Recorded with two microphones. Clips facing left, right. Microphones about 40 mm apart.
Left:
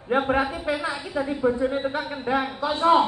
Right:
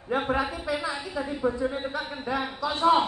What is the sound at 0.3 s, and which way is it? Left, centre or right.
A man's voice, left.